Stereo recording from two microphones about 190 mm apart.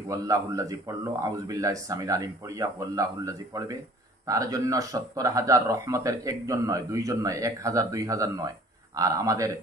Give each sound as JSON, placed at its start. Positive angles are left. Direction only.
{"t": 0.1, "sound": "speech", "side_deg": -20}